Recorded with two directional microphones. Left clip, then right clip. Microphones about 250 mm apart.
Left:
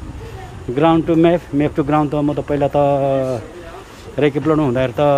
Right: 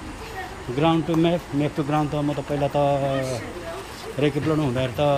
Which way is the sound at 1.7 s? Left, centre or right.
Left.